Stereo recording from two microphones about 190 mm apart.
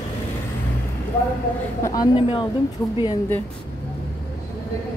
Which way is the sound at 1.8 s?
20° left (ahead or behind).